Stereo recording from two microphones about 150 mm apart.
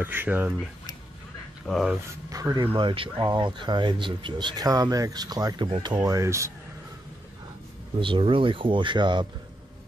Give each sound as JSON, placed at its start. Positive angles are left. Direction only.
{"t": 0.0, "sound": "speech", "side_deg": -15}
{"t": 1.7, "sound": "speech", "side_deg": 0}
{"t": 2.2, "sound": "speech", "side_deg": -25}
{"t": 2.6, "sound": "speech", "side_deg": -35}
{"t": 8.0, "sound": "speech", "side_deg": -35}